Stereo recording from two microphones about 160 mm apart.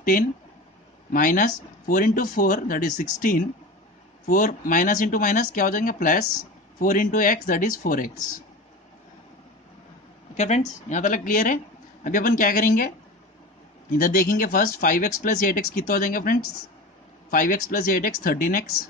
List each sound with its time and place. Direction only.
1.1 s speech: 60° left (ahead or behind)
10.3 s speech: 45° left (ahead or behind)
13.9 s speech: 60° left (ahead or behind)